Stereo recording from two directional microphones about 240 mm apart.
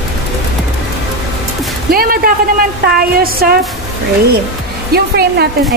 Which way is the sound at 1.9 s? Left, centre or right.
Right.